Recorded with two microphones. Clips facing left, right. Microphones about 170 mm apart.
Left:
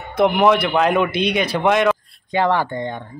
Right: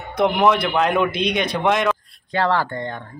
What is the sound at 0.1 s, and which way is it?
Speech, centre (ahead or behind).